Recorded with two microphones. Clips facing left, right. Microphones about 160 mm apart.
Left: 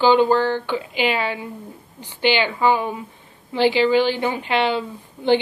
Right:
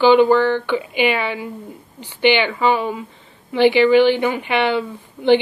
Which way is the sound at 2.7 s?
15° left (ahead or behind).